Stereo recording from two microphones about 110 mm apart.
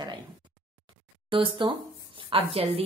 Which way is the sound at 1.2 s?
50° right (ahead or behind).